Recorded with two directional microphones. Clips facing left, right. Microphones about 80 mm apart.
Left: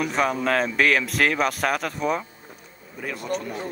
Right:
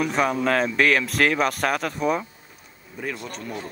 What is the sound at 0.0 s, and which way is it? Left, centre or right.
Speech, centre.